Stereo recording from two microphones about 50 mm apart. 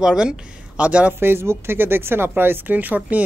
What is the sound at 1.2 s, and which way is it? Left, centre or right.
Speech, right.